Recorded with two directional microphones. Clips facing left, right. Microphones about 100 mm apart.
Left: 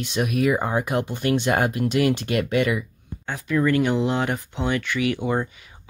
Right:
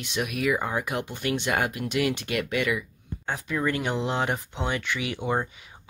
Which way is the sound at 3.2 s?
25° right (ahead or behind).